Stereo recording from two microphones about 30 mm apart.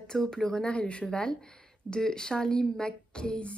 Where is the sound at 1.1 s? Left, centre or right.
Left.